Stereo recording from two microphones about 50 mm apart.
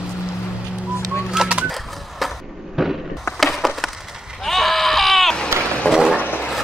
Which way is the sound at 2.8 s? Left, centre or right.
Centre.